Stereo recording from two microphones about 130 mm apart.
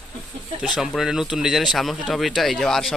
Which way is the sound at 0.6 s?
5° right (ahead or behind).